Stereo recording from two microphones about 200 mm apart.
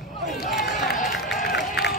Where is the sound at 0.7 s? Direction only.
40° left (ahead or behind).